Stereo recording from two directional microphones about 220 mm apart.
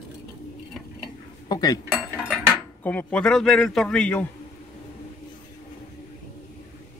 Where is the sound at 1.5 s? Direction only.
15° left (ahead or behind).